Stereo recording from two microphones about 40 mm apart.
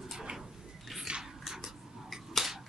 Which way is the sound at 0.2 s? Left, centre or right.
Centre.